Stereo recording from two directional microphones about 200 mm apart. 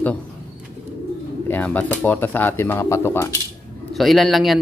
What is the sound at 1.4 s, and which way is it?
Speech, 10° left (ahead or behind).